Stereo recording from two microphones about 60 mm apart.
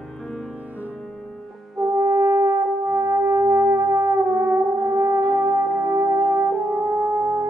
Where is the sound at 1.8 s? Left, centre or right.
Right.